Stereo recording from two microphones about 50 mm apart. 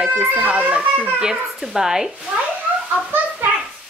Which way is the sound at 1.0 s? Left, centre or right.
Centre.